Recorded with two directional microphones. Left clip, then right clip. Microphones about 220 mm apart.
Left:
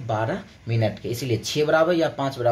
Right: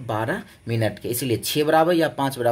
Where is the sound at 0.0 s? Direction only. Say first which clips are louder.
Even; 50° right (ahead or behind).